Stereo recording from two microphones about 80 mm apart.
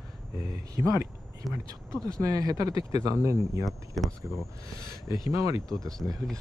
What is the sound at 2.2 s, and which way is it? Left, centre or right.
Speech, right.